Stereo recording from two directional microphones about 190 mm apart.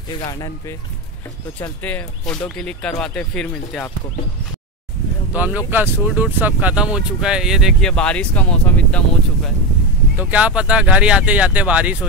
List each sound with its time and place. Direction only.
0.2 s speech: 20° left (ahead or behind); by 3.9 s 5° left (ahead or behind)
5.3 s speech: 10° right (ahead or behind)
10.1 s speech: 5° right (ahead or behind)